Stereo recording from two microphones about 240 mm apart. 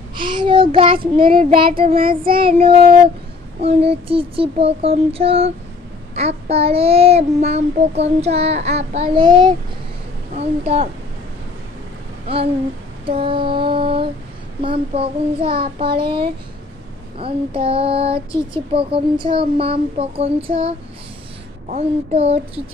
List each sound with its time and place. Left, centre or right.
0.1 s child singing: centre
1.8 s child singing: right
2.4 s child singing: right
13.0 s child singing: right